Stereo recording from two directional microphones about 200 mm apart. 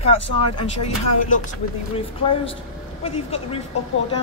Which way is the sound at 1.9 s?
30° left (ahead or behind).